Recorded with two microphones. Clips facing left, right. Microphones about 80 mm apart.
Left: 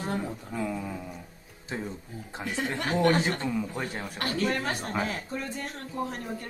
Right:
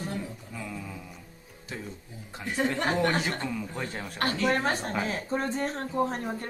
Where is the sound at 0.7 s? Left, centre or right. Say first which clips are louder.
Left 5 dB; centre.